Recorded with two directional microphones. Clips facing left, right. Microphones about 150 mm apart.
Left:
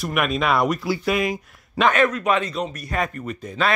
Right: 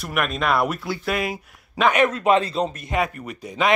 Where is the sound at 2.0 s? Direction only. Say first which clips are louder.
Right 2 dB; 25° right (ahead or behind).